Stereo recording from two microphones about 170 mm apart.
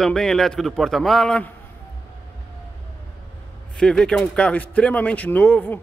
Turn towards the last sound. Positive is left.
turn(degrees=10)  # may be behind; listen again after turning